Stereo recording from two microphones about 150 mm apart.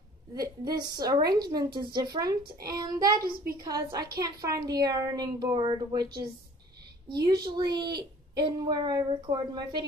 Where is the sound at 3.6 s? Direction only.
25° right (ahead or behind).